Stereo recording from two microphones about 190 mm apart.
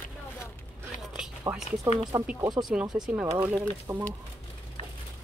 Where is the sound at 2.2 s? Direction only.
30° right (ahead or behind).